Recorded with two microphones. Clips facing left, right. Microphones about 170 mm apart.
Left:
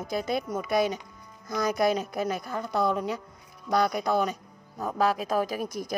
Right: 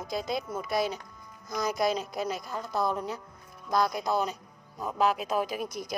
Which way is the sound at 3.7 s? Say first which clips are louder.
Left 2 dB; 60° left (ahead or behind).